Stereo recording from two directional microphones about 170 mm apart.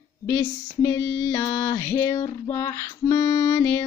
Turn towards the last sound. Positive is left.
turn(degrees=15)  # may be behind; listen again after turning